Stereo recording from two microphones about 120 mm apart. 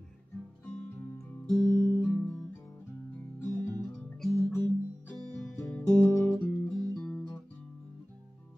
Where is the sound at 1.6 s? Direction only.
30° right (ahead or behind).